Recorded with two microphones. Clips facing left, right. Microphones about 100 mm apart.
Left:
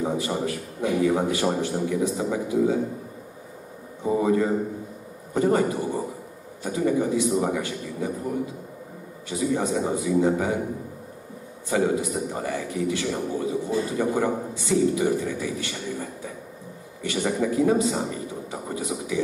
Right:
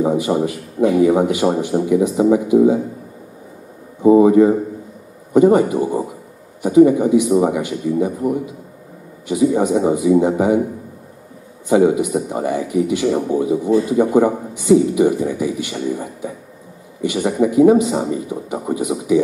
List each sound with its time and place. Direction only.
0.0 s a sound: 15° right (ahead or behind)
0.5 s a man's voice: 15° right (ahead or behind)
4.1 s a man's voice: 20° right (ahead or behind)
9.3 s a man's voice: 15° right (ahead or behind)
11.7 s a man's voice: 15° right (ahead or behind)